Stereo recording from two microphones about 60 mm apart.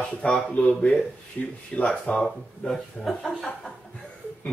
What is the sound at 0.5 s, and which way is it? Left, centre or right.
Speech, left.